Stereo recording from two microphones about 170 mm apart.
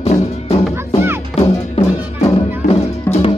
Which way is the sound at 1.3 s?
40° left (ahead or behind).